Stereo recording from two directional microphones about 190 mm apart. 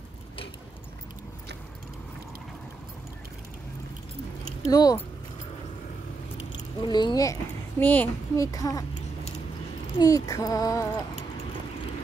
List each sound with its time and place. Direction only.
4.6 s speech: 20° left (ahead or behind)
6.8 s speech: 25° left (ahead or behind)
7.8 s a child's voice: 10° left (ahead or behind)
9.9 s a child's voice: 20° left (ahead or behind)